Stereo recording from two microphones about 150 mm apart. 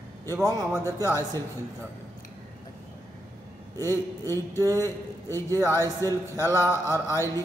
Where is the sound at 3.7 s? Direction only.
15° left (ahead or behind).